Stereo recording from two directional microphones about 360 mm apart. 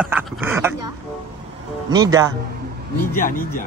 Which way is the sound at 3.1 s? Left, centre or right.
Left.